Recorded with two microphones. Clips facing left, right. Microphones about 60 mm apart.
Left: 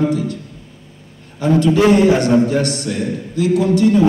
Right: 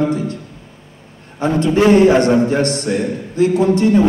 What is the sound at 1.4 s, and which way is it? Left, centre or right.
A man's voice, right.